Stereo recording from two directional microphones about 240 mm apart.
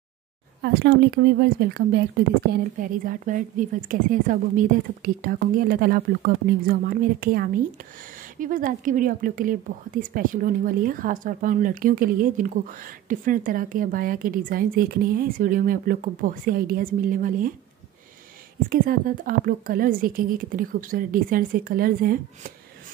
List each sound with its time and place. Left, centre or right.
0.6 s speech: right
18.7 s speech: right